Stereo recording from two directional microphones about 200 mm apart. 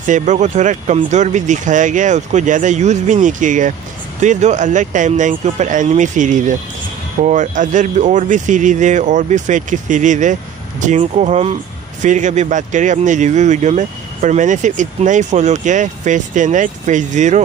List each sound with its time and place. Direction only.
0.0 s speech: 40° right (ahead or behind)